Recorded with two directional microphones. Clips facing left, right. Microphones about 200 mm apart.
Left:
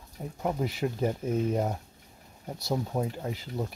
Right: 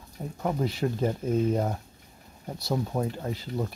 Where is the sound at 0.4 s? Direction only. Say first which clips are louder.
Right 2 dB; 15° left (ahead or behind).